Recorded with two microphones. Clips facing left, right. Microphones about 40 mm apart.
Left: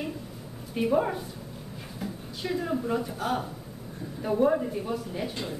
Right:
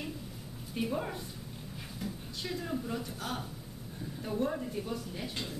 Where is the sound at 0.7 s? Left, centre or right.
Centre.